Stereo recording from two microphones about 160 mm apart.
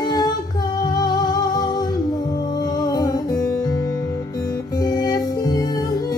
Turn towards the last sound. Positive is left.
turn(degrees=25)  # may be behind; listen again after turning